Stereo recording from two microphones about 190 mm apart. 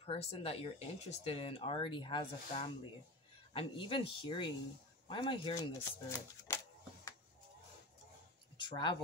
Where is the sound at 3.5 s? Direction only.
30° left (ahead or behind).